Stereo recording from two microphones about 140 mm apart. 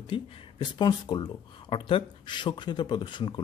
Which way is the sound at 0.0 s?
35° left (ahead or behind).